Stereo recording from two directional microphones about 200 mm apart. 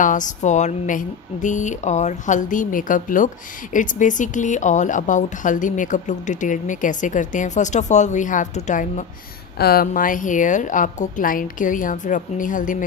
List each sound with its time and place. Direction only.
0.0 s speech: 40° left (ahead or behind)
9.6 s speech: 50° left (ahead or behind)